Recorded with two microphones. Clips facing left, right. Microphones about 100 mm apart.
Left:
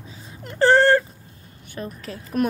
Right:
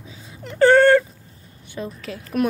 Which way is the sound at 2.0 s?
35° left (ahead or behind).